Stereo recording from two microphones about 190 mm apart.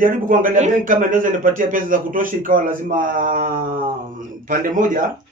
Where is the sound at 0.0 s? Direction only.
45° right (ahead or behind).